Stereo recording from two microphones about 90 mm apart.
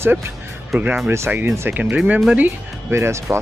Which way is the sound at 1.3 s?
20° right (ahead or behind).